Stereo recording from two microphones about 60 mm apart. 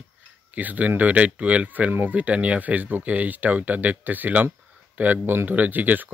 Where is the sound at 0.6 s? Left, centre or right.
Right.